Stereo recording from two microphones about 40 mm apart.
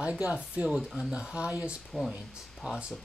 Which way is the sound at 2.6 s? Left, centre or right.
Right.